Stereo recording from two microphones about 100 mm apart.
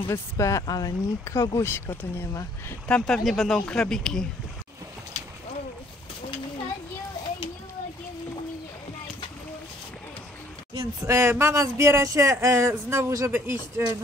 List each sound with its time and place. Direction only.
0.1 s speech: 30° left (ahead or behind)
1.5 s speech: 25° left (ahead or behind)
2.9 s speech: 5° left (ahead or behind)
11.1 s speech: 25° right (ahead or behind)